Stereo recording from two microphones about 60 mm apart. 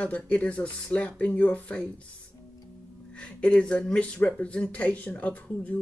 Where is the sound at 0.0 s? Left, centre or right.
Left.